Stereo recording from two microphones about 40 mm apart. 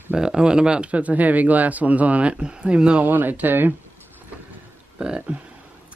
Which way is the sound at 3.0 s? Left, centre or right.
Right.